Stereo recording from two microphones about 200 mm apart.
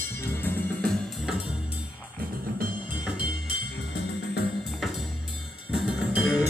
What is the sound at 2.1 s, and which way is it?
Music, 45° right (ahead or behind).